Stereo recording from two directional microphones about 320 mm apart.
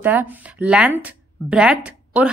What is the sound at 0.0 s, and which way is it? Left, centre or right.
Speech, centre.